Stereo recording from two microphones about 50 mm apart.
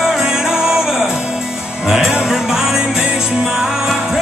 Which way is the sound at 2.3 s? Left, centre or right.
Centre.